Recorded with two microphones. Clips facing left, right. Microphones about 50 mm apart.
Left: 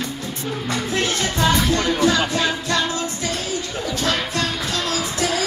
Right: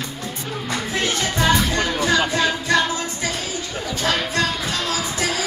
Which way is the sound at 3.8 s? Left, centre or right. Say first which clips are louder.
Right 1 dB; centre.